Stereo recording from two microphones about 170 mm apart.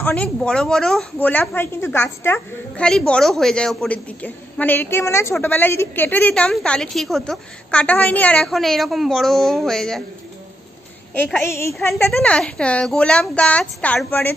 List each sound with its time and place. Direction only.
0.0 s a woman's voice: 5° left (ahead or behind)
11.1 s a woman's voice: 5° left (ahead or behind)
11.4 s a woman's voice: 15° left (ahead or behind)
12.1 s a woman's voice: 5° left (ahead or behind)